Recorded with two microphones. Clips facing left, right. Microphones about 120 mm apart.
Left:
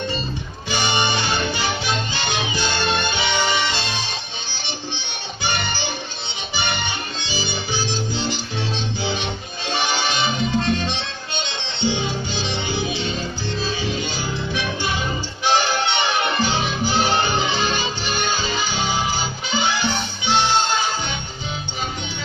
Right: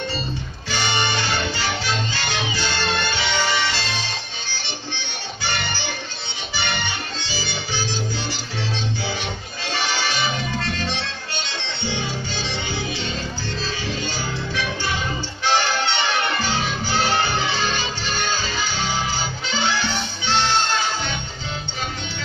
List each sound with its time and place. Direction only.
0.7 s music: 15° left (ahead or behind)
4.9 s music: 15° left (ahead or behind)
7.2 s music: 15° left (ahead or behind)